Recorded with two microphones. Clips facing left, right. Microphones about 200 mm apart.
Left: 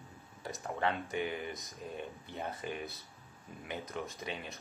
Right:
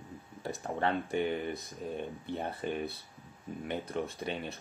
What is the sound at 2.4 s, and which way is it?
Speech, 30° right (ahead or behind).